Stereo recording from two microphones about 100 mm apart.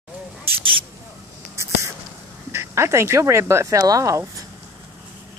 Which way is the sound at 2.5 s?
25° right (ahead or behind).